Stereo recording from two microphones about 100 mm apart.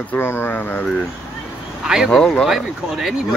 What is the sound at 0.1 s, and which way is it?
Speech, 25° left (ahead or behind).